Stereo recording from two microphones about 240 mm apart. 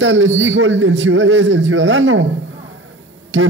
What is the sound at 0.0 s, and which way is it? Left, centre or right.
Speech, right.